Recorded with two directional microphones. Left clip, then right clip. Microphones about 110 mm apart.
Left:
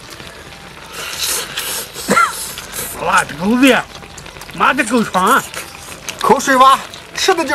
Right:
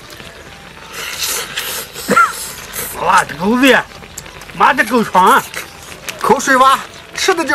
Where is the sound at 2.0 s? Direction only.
30° left (ahead or behind).